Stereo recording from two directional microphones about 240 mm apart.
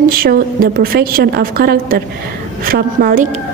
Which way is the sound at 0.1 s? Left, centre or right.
Right.